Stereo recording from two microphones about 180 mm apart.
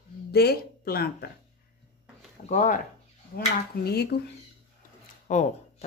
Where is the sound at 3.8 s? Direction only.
65° left (ahead or behind).